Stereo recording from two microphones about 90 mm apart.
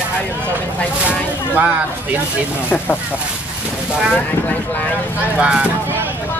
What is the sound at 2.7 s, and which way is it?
Speech, 20° left (ahead or behind).